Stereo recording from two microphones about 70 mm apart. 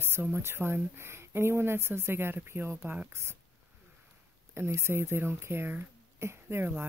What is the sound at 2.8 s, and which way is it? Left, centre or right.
Speech, centre.